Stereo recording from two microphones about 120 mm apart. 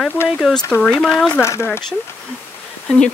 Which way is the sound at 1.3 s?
20° left (ahead or behind).